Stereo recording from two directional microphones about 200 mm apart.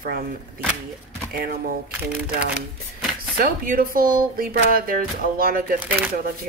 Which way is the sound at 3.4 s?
45° right (ahead or behind).